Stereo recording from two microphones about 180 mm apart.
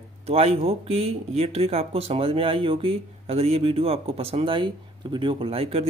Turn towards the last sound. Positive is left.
turn(degrees=-35)  # may be behind; listen again after turning